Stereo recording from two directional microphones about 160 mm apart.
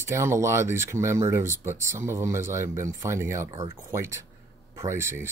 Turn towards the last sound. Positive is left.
turn(degrees=-15)  # may be behind; listen again after turning